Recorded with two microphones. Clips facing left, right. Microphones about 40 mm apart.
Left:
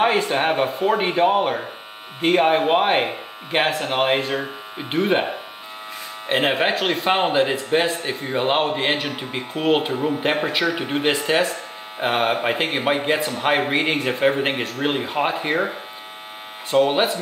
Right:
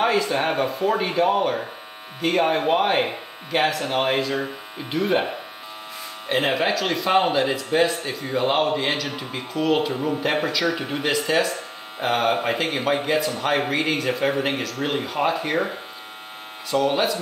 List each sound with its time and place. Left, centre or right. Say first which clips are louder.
0.0 s speech: left 2 dB; left
6.2 s speech: left 2 dB; left
16.7 s speech: left 3 dB; left